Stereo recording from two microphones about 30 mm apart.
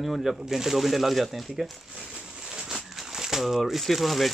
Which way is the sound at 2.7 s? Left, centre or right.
Centre.